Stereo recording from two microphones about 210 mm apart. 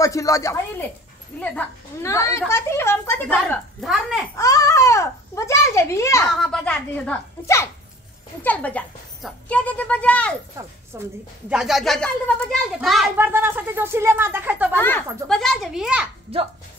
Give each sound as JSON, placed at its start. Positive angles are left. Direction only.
{"t": 0.0, "sound": "a woman's voice", "side_deg": 15}
{"t": 4.4, "sound": "babbling", "side_deg": 15}
{"t": 6.3, "sound": "a woman's voice", "side_deg": 0}
{"t": 10.9, "sound": "a woman's voice", "side_deg": -10}
{"t": 14.7, "sound": "speech", "side_deg": 10}
{"t": 16.3, "sound": "speech", "side_deg": -30}